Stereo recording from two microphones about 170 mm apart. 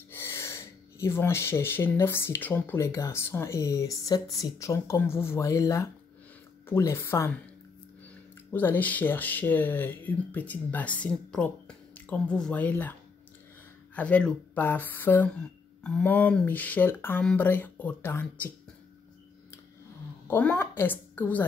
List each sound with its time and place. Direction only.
0.1 s speech: 15° left (ahead or behind)
8.5 s speech: 10° left (ahead or behind)
13.9 s speech: 5° left (ahead or behind)
20.2 s a woman's voice: 10° left (ahead or behind)